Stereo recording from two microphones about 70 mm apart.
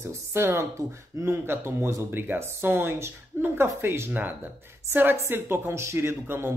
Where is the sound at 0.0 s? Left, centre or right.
Right.